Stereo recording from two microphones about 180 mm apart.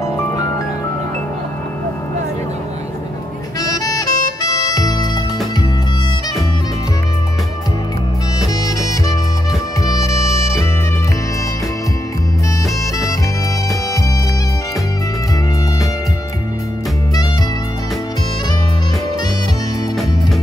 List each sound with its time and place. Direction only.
3.6 s saxophone: 20° left (ahead or behind)
9.8 s music: 15° left (ahead or behind)